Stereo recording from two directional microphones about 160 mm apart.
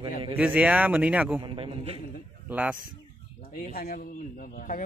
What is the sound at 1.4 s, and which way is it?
Speech, 35° right (ahead or behind).